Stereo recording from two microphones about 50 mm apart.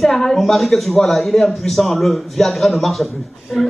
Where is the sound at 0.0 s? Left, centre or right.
Centre.